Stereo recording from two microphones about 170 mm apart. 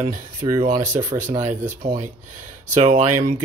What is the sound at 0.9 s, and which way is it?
Speech, 45° right (ahead or behind).